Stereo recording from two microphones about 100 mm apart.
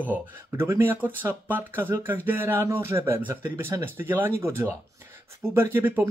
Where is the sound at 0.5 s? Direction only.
25° right (ahead or behind).